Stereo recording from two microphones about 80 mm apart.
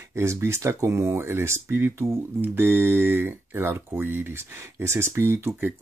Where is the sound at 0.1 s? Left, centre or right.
Right.